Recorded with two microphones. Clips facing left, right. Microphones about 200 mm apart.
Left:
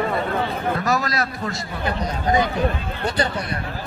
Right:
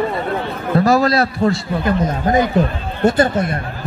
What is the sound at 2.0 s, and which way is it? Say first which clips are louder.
Speech: right 4 dB; 45° right (ahead or behind).